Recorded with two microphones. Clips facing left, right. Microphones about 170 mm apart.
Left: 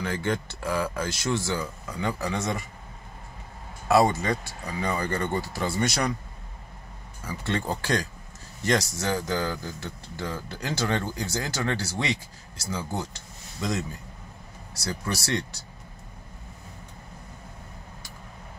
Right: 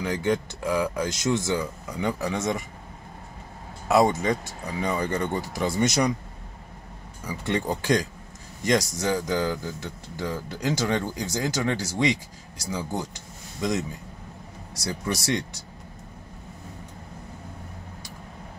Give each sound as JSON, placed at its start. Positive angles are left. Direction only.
{"t": 0.0, "sound": "speech", "side_deg": -15}
{"t": 3.9, "sound": "speech", "side_deg": -15}
{"t": 7.2, "sound": "speech", "side_deg": -15}